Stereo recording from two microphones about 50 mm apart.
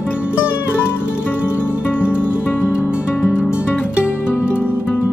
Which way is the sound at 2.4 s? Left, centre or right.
Left.